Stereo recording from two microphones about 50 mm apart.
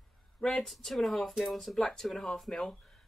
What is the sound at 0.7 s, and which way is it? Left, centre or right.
Speech, centre.